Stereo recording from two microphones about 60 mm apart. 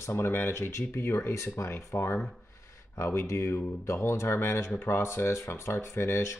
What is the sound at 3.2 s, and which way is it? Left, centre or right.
Speech, left.